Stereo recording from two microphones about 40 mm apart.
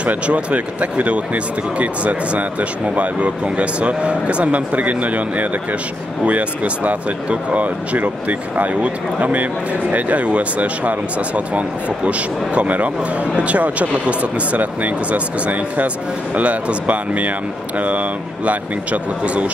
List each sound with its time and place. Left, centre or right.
0.0 s speech: right